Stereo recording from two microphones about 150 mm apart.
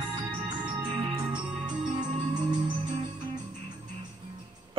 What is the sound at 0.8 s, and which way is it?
Music, 35° right (ahead or behind).